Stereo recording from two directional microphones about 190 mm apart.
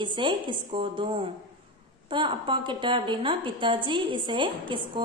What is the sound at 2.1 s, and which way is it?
A woman's voice, 25° right (ahead or behind).